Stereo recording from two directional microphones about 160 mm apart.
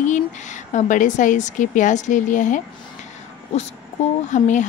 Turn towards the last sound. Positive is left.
turn(degrees=50)  # may be behind; listen again after turning